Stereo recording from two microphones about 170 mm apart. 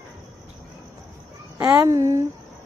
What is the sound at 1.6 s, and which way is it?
Speech, 20° right (ahead or behind).